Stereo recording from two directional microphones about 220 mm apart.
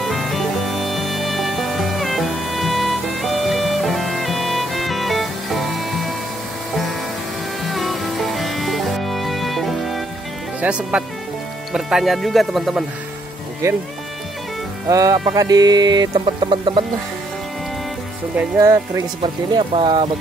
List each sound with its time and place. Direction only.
0.0 s music: centre (ahead or behind)
7.6 s music: centre (ahead or behind)
10.6 s speech: 5° right (ahead or behind)
13.6 s speech: 15° right (ahead or behind)
14.9 s chicken: 15° right (ahead or behind)
18.6 s speech: 15° right (ahead or behind)
19.5 s chicken: 25° right (ahead or behind)